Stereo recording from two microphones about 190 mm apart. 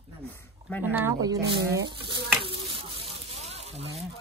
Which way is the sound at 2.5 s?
30° right (ahead or behind).